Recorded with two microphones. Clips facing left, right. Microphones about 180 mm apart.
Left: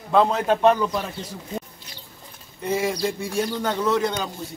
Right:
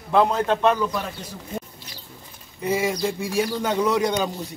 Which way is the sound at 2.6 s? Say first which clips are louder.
Right 1 dB; 5° right (ahead or behind).